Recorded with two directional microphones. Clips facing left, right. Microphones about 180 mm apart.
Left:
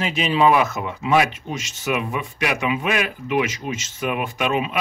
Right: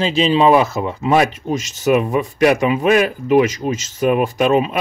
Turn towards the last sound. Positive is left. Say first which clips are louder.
# right 8 dB
turn(degrees=-40)  # may be behind; listen again after turning